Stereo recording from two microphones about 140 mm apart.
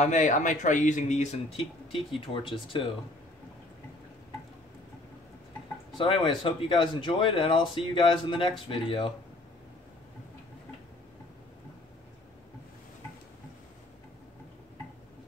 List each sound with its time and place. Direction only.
0.0 s speech: 60° left (ahead or behind)
1.9 s speech: 40° left (ahead or behind)
5.9 s speech: 40° left (ahead or behind)